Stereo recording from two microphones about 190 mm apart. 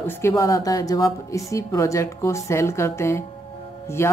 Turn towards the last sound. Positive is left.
turn(degrees=15)  # may be behind; listen again after turning